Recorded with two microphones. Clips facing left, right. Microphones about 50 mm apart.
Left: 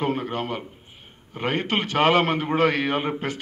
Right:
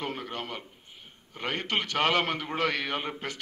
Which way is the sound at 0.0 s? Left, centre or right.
Centre.